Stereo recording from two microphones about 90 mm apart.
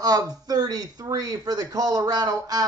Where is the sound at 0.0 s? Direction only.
45° right (ahead or behind).